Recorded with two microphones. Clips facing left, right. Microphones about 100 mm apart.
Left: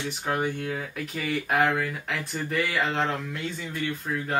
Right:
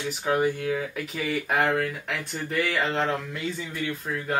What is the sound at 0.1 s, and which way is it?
Speech, centre (ahead or behind).